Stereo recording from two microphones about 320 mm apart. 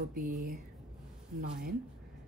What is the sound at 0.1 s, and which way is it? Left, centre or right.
A woman's voice, right.